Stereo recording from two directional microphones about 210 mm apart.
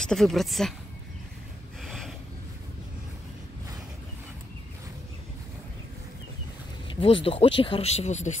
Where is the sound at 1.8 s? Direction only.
Centre (ahead or behind).